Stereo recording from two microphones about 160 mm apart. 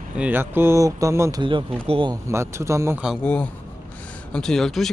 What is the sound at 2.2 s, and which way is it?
Speech, 15° right (ahead or behind).